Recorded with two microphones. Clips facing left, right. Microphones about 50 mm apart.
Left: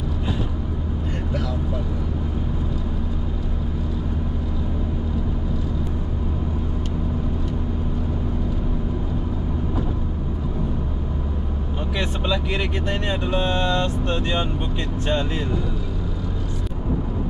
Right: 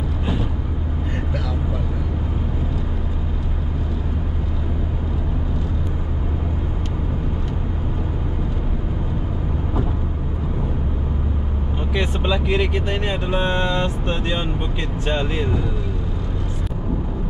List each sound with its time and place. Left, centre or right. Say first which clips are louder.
11.9 s speech: right 2 dB; centre